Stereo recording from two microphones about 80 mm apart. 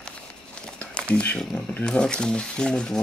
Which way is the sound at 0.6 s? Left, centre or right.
Centre.